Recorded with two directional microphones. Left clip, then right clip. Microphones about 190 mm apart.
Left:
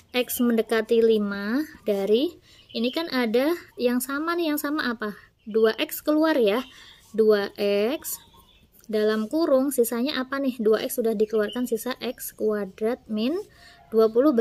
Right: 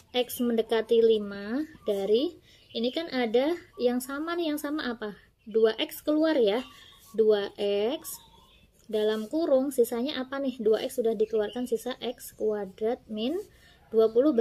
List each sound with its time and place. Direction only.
0.1 s speech: 30° left (ahead or behind)